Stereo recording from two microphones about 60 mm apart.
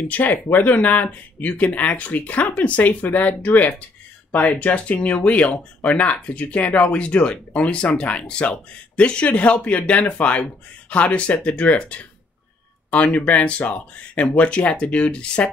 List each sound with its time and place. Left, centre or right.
0.1 s speech: left